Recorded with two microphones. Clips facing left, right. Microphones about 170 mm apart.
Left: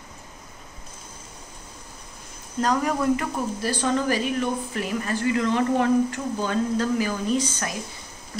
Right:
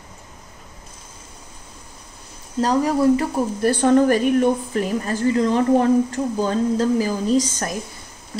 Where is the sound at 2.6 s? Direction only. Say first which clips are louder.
Right 5 dB; 30° right (ahead or behind).